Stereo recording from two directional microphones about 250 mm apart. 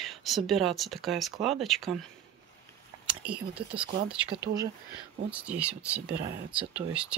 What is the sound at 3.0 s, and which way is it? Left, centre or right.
Speech, centre.